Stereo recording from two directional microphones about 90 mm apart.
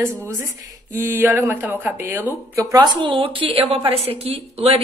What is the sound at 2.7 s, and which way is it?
A woman's voice, 55° right (ahead or behind).